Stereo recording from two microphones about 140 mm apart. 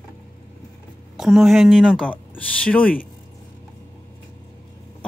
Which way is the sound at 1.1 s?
Centre (ahead or behind).